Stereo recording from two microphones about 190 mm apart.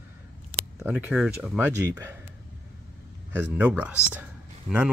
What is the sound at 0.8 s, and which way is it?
Speech, 5° right (ahead or behind).